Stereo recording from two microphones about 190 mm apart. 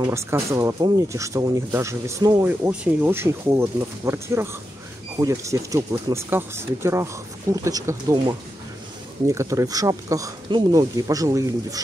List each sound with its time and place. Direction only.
0.0 s speech: 15° right (ahead or behind)